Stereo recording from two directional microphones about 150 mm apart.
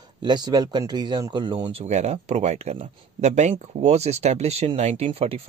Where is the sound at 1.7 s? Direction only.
45° right (ahead or behind).